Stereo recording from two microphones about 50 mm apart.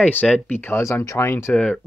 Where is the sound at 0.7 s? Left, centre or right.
Left.